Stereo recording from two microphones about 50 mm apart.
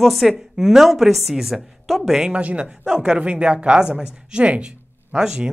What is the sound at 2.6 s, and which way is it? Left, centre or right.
Speech, centre.